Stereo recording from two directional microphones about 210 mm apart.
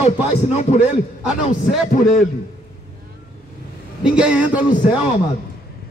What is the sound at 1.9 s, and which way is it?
Speech, 35° left (ahead or behind).